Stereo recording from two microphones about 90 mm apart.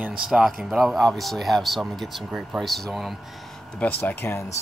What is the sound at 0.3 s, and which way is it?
Speech, 5° right (ahead or behind).